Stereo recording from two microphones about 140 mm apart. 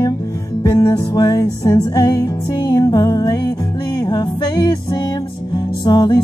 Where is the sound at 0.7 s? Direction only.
25° left (ahead or behind).